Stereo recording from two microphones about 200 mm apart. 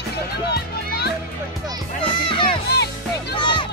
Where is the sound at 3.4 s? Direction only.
25° left (ahead or behind).